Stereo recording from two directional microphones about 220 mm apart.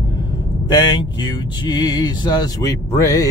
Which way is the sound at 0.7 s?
20° left (ahead or behind).